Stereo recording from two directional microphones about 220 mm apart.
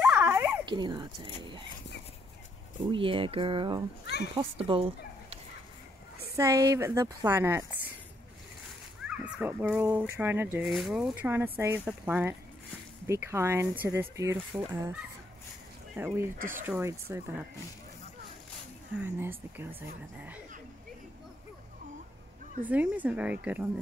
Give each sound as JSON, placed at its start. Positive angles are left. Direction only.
{"t": 0.0, "sound": "dog", "side_deg": -5}
{"t": 0.7, "sound": "speech", "side_deg": -20}
{"t": 2.9, "sound": "speech", "side_deg": -25}
{"t": 4.0, "sound": "a child's voice", "side_deg": 50}
{"t": 4.4, "sound": "speech", "side_deg": -25}
{"t": 6.3, "sound": "speech", "side_deg": -15}
{"t": 9.0, "sound": "speech", "side_deg": -5}
{"t": 16.3, "sound": "speech", "side_deg": -40}
{"t": 16.6, "sound": "speech", "side_deg": -10}
{"t": 18.9, "sound": "speech", "side_deg": -10}
{"t": 22.7, "sound": "speech", "side_deg": -5}